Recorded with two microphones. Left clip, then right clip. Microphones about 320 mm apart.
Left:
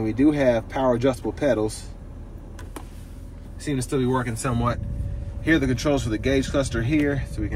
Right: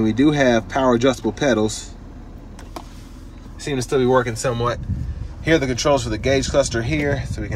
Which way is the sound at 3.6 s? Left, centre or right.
Centre.